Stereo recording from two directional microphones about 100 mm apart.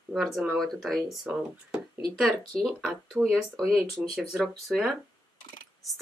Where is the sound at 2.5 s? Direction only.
5° right (ahead or behind).